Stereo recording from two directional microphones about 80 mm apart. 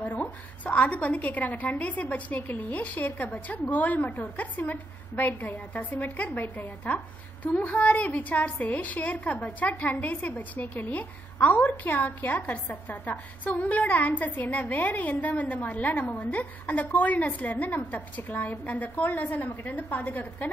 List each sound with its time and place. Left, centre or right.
0.0 s a woman's voice: left